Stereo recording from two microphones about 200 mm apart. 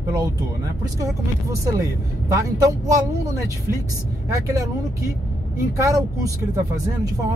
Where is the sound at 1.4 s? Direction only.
15° right (ahead or behind).